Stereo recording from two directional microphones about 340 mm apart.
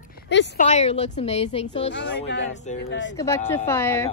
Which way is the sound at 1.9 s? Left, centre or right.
Left.